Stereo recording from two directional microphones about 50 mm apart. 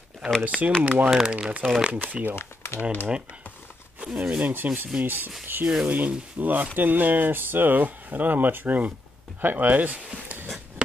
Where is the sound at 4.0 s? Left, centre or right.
Right.